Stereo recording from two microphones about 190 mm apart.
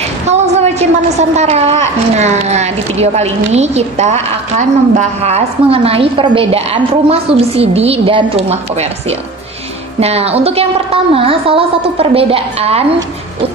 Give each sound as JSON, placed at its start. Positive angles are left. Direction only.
{"t": 0.3, "sound": "a sound", "side_deg": -35}
{"t": 1.3, "sound": "speech", "side_deg": -35}
{"t": 9.9, "sound": "speech", "side_deg": -35}